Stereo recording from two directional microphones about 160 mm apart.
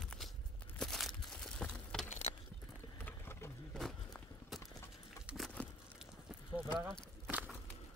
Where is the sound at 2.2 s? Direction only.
40° left (ahead or behind).